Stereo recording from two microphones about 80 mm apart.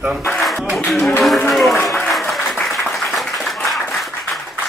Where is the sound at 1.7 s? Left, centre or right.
Left.